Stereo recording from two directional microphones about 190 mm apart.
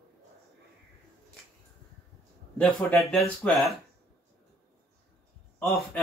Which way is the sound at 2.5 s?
Centre (ahead or behind).